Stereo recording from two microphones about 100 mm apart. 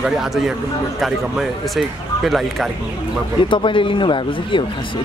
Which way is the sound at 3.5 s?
60° left (ahead or behind).